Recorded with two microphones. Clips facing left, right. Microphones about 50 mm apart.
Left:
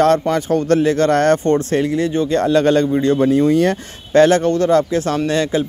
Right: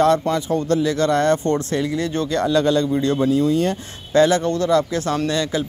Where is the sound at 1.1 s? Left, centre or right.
Left.